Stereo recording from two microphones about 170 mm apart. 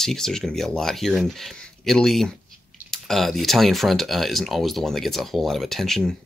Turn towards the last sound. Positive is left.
turn(degrees=0)  # may be behind; listen again after turning